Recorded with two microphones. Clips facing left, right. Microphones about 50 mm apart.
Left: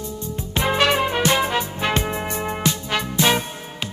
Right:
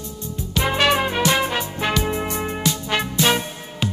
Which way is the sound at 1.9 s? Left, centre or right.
Left.